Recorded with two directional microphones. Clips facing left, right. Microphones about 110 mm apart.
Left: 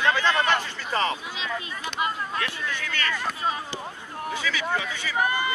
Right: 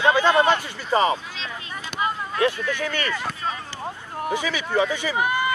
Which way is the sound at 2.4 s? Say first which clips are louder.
Right 9 dB; 15° right (ahead or behind).